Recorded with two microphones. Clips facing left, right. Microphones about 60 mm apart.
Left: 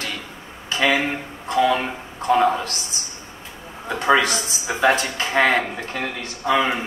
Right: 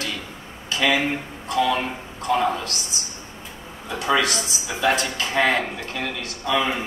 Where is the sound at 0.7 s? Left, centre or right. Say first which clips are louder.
Left 1 dB; left.